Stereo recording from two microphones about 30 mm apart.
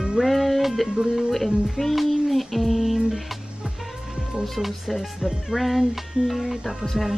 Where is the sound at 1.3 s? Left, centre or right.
Centre.